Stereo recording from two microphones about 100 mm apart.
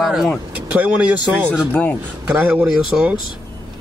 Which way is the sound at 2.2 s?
20° right (ahead or behind).